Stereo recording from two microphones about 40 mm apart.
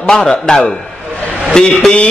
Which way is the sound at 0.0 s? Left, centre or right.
Centre.